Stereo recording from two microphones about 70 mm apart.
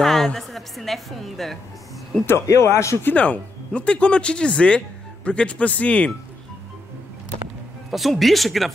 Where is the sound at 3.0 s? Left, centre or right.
Left.